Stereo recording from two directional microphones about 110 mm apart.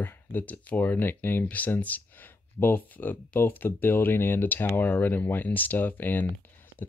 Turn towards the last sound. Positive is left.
turn(degrees=15)  # may be behind; listen again after turning